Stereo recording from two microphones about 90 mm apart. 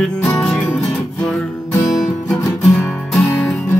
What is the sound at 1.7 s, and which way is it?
Music, 40° left (ahead or behind).